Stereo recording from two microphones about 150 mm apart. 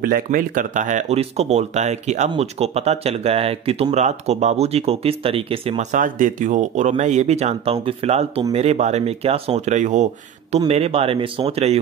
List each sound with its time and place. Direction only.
0.0 s speech: 70° right (ahead or behind); by 5.9 s 40° right (ahead or behind)
5.9 s speech: 60° right (ahead or behind)
10.7 s a man's voice: 40° right (ahead or behind)